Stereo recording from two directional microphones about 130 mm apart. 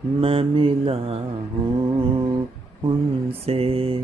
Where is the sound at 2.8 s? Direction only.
45° right (ahead or behind).